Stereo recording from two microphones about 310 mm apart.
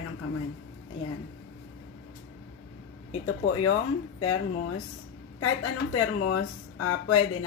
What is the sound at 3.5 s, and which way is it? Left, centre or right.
Speech, left.